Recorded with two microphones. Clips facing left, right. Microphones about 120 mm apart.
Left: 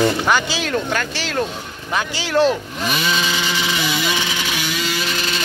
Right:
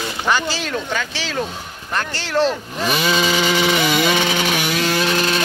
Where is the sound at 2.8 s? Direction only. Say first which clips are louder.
Right 3 dB; 35° right (ahead or behind).